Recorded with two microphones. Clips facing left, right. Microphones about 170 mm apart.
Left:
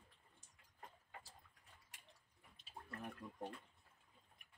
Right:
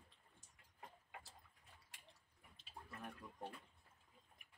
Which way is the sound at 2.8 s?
20° left (ahead or behind).